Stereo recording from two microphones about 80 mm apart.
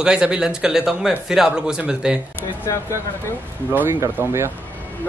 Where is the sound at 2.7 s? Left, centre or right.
Left.